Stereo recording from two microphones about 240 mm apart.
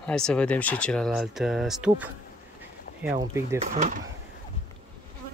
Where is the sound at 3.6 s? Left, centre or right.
Right.